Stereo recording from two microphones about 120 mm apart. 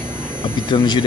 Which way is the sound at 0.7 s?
40° left (ahead or behind).